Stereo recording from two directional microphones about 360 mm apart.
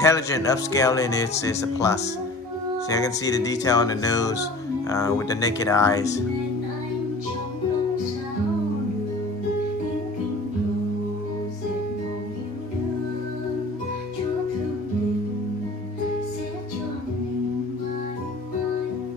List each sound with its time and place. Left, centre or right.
0.0 s speech: centre